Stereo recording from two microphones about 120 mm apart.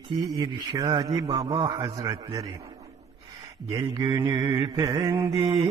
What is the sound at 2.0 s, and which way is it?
Mantra, 30° right (ahead or behind).